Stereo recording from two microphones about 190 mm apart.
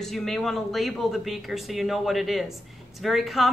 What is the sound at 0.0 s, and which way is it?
Speech, centre (ahead or behind).